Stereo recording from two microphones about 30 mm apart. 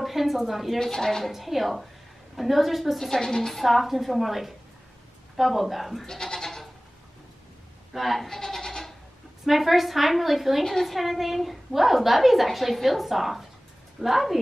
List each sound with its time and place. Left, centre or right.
0.0 s a woman's voice: centre
0.8 s a woman's voice: centre
1.3 s a woman's voice: centre
3.0 s a woman's voice: centre
3.5 s a woman's voice: centre
6.0 s goat: centre
7.9 s a woman's voice: centre
8.3 s goat: centre
9.5 s a woman's voice: centre
10.6 s a woman's voice: centre
10.9 s a woman's voice: centre